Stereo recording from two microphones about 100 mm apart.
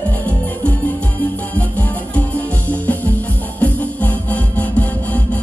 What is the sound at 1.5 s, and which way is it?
Music, 15° left (ahead or behind).